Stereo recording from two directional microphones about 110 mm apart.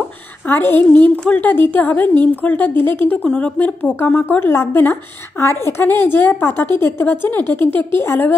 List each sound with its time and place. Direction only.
0.5 s a woman's voice: 20° left (ahead or behind)